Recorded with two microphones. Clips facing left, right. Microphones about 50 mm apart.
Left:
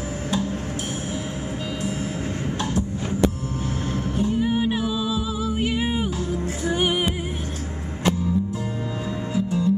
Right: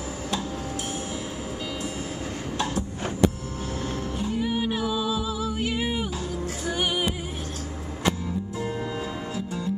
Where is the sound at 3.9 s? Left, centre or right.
Left.